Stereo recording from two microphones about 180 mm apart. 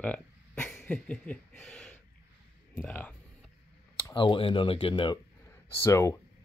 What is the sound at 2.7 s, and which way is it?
Speech, 10° left (ahead or behind).